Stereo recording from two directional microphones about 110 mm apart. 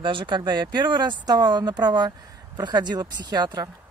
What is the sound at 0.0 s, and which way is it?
Speech, 50° right (ahead or behind).